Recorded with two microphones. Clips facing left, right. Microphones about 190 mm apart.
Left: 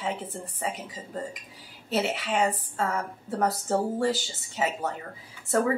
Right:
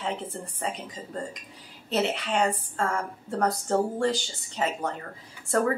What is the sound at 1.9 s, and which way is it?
A woman's voice, 5° left (ahead or behind).